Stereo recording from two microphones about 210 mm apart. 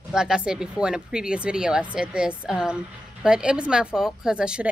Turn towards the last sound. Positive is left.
turn(degrees=-5)  # may be behind; listen again after turning